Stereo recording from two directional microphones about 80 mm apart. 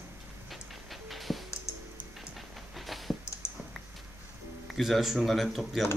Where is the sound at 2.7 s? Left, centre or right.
Centre.